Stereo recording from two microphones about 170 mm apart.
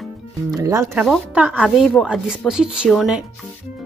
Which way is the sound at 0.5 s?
20° right (ahead or behind).